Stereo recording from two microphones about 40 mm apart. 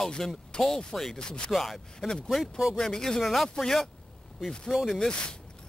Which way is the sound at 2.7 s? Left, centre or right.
Centre.